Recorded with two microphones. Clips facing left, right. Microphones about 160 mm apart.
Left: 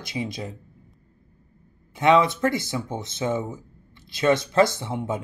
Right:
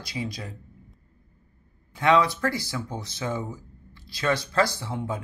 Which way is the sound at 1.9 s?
20° left (ahead or behind).